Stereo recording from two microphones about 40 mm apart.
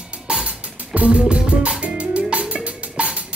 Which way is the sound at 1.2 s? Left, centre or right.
Right.